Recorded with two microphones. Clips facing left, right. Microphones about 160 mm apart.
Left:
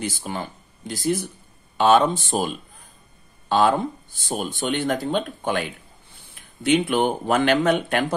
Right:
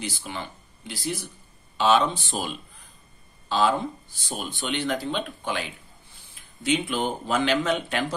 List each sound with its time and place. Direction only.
0.0 s speech: 45° left (ahead or behind)